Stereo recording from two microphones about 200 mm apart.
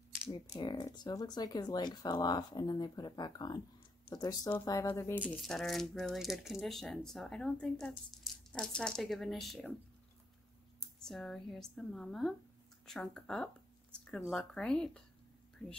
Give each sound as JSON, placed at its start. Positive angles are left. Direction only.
{"t": 0.6, "sound": "speech", "side_deg": 20}
{"t": 5.2, "sound": "speech", "side_deg": 0}
{"t": 10.8, "sound": "speech", "side_deg": 5}